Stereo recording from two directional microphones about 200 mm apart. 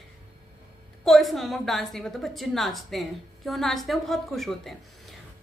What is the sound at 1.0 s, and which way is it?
A woman's voice, centre (ahead or behind).